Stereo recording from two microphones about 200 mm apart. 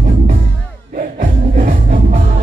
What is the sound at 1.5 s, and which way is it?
Music, 40° right (ahead or behind).